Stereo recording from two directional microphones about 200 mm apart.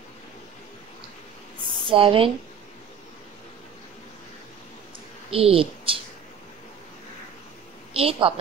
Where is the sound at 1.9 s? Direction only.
25° right (ahead or behind).